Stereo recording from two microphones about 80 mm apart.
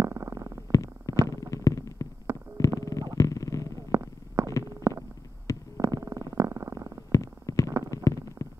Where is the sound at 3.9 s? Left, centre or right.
Right.